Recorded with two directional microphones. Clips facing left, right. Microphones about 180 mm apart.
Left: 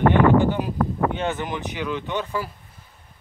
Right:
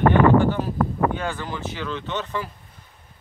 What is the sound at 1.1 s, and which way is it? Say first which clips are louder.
Speech: left 2 dB; 20° left (ahead or behind).